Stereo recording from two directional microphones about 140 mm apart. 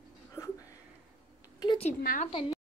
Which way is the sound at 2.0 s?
75° left (ahead or behind).